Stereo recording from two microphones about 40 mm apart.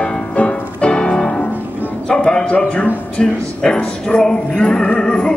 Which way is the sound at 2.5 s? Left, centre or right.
Left.